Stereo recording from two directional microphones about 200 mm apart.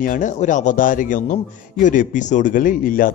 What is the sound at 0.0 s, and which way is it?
A man's voice, 40° left (ahead or behind).